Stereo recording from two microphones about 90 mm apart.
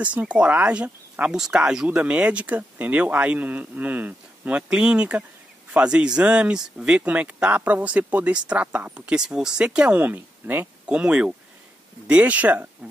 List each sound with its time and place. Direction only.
0.0 s speech: 15° right (ahead or behind)
11.0 s speech: 10° right (ahead or behind)